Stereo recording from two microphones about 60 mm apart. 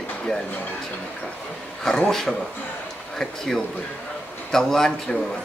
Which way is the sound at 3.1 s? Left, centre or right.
Centre.